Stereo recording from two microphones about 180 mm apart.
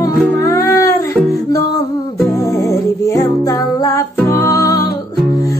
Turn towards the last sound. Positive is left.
turn(degrees=20)  # may be behind; listen again after turning